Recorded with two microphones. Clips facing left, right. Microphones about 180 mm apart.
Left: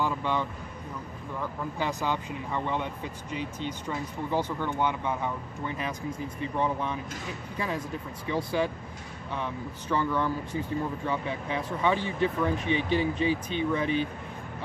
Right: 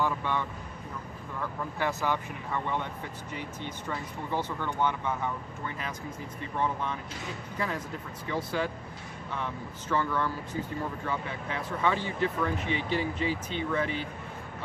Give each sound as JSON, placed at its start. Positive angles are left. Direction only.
{"t": 0.0, "sound": "speech", "side_deg": 15}
{"t": 1.8, "sound": "speech", "side_deg": 15}